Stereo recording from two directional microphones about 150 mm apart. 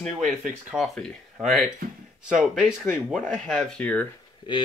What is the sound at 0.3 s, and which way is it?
Speech, 10° right (ahead or behind).